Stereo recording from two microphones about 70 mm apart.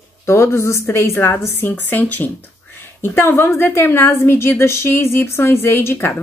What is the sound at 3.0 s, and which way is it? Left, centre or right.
A woman's voice, left.